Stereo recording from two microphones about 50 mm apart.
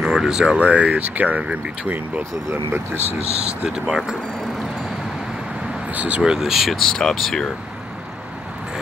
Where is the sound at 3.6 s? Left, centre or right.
Centre.